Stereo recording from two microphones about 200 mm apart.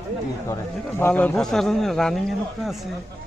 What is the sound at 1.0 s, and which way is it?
A man's voice, 10° left (ahead or behind).